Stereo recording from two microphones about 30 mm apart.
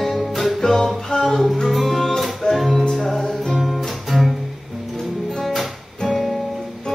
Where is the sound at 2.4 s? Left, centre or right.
Left.